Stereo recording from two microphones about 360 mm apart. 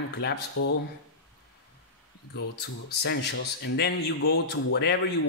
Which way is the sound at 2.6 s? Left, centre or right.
Left.